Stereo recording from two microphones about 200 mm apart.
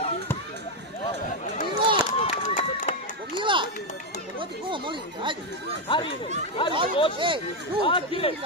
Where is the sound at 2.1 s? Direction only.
35° left (ahead or behind).